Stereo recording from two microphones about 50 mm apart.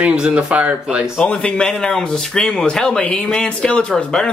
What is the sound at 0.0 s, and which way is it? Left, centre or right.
Speech, right.